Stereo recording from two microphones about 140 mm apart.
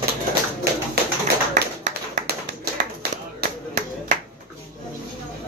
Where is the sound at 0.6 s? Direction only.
90° right.